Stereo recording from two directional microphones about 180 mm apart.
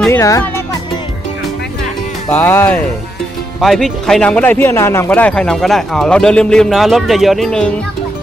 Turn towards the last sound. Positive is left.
turn(degrees=0)  # may be behind; listen again after turning